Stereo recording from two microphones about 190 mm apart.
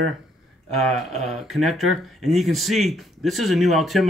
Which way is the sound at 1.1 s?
Centre (ahead or behind).